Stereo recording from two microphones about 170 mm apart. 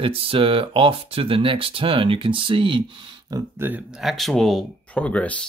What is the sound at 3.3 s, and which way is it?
Speech, 10° right (ahead or behind).